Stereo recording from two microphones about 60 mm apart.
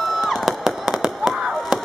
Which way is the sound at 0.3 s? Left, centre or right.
Centre.